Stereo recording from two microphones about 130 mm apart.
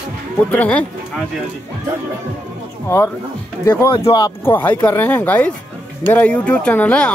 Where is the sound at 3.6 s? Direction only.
20° left (ahead or behind).